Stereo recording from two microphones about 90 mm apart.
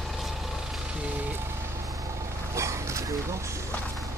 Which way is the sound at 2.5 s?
35° right (ahead or behind).